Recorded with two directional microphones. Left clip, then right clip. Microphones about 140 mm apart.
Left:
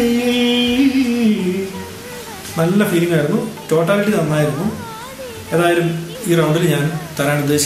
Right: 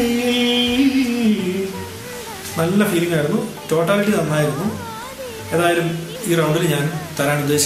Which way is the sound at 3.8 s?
10° left (ahead or behind).